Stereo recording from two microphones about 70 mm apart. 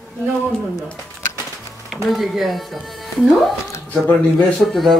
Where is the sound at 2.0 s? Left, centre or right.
Centre.